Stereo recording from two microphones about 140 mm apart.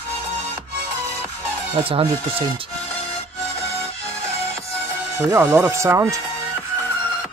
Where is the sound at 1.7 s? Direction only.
40° right (ahead or behind).